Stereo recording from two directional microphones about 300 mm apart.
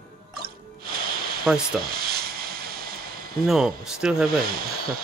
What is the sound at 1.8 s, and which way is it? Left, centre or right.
Hiss, right.